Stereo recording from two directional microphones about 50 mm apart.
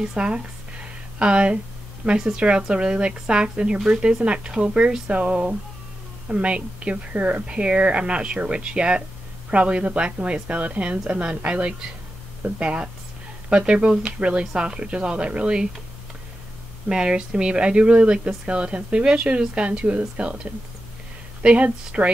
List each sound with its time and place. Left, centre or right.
0.1 s speech: right
16.9 s speech: centre
21.4 s speech: right